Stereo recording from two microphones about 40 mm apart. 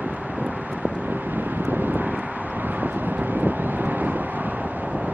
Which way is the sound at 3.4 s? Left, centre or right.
Right.